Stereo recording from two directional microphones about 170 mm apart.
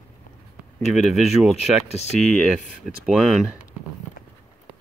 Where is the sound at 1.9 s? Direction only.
40° left (ahead or behind).